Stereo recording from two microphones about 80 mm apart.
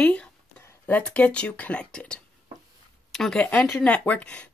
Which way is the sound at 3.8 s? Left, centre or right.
Centre.